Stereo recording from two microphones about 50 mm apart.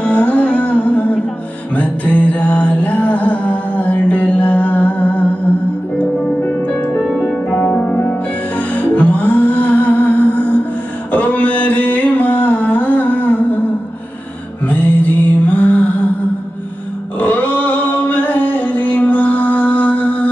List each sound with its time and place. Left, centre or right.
0.0 s music: left
7.2 s music: left
7.9 s music: left
14.7 s mantra: left
17.2 s a sound: left